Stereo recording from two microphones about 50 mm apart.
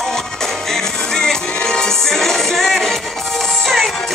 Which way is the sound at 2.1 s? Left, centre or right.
Centre.